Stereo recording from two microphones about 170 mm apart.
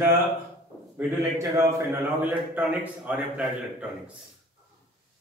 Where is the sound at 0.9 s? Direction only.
15° right (ahead or behind).